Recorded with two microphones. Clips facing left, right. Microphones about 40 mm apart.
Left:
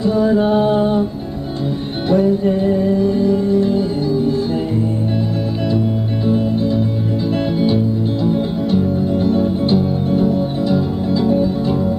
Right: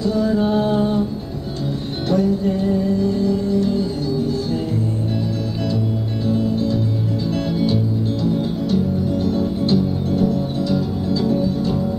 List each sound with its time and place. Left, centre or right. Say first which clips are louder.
0.0 s music: left 4 dB; left
2.0 s music: left 4 dB; left
6.2 s music: left 3 dB; left